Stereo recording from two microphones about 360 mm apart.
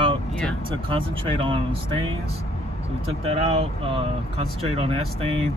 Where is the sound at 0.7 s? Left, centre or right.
Centre.